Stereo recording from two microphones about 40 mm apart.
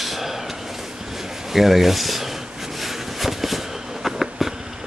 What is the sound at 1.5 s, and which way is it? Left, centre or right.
Speech, centre.